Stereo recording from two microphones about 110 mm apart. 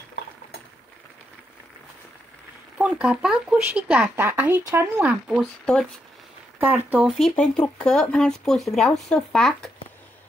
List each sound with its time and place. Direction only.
2.8 s speech: 10° right (ahead or behind)
4.3 s speech: 20° right (ahead or behind)
5.0 s speech: 10° right (ahead or behind)
6.6 s speech: 15° right (ahead or behind)
7.2 s speech: 5° left (ahead or behind)